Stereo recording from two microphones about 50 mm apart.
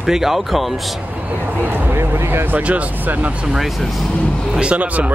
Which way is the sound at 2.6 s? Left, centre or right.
Right.